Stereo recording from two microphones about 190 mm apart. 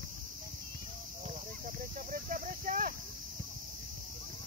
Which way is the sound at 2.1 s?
45° right (ahead or behind).